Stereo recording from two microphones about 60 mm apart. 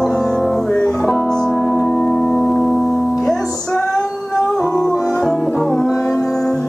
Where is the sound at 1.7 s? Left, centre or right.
Left.